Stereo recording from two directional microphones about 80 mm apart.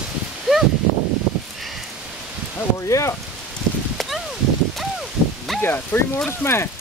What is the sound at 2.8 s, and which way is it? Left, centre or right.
Rain, left.